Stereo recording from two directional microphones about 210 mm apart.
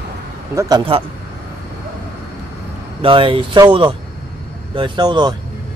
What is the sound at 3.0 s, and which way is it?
Speech, 25° right (ahead or behind).